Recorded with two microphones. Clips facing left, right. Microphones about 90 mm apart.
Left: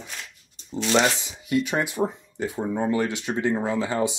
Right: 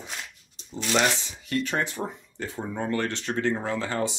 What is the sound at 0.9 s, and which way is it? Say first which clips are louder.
Speech: left 3 dB; 15° left (ahead or behind).